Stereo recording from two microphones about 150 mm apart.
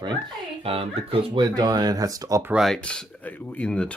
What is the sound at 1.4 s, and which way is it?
Speech, 25° right (ahead or behind).